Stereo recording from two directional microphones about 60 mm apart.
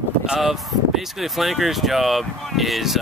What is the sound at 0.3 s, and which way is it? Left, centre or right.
Speech, centre.